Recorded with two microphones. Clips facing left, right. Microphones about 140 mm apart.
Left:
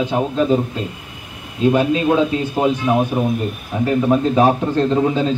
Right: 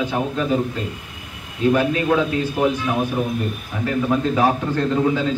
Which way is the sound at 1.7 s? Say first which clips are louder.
Left 4 dB; 25° left (ahead or behind).